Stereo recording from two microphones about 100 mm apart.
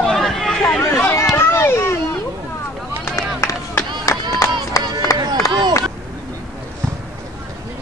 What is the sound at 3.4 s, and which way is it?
Run, 30° left (ahead or behind).